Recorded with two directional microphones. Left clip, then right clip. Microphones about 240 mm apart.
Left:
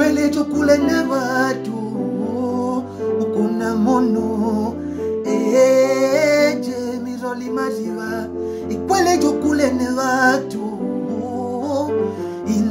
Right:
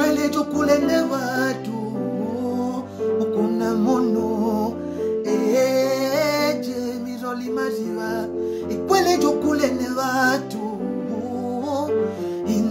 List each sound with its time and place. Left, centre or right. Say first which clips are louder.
0.0 s music: left 3 dB; centre
3.2 s music: left 2 dB; centre
8.8 s music: left 2 dB; centre